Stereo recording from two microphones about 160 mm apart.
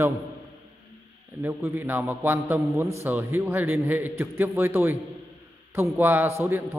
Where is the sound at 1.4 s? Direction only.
15° right (ahead or behind).